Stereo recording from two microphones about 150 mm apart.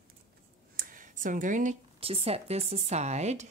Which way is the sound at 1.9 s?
40° right (ahead or behind).